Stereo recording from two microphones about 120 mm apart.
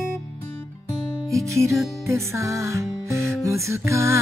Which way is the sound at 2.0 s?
25° right (ahead or behind).